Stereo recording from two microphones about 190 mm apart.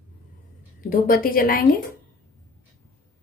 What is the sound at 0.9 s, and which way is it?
Speech, 50° left (ahead or behind).